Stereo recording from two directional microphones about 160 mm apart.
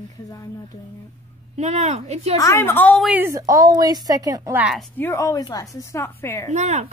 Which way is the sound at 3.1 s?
10° right (ahead or behind).